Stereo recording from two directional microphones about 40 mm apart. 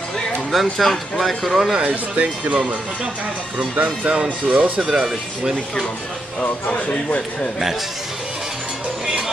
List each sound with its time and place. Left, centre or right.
0.5 s speech: centre
1.9 s speech: right
3.7 s speech: right
5.0 s speech: centre
6.7 s speech: left